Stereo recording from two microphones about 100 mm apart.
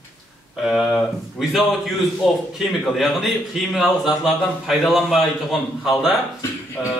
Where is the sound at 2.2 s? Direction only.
Centre (ahead or behind).